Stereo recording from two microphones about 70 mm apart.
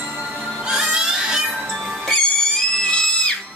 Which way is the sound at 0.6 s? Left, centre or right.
Centre.